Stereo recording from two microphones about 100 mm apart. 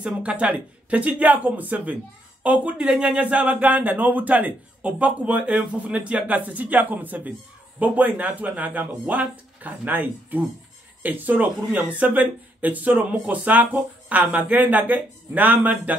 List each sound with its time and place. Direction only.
0.0 s speech: 10° right (ahead or behind)